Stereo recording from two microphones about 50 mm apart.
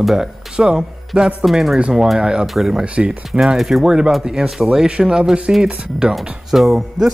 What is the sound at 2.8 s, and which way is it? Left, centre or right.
Speech, centre.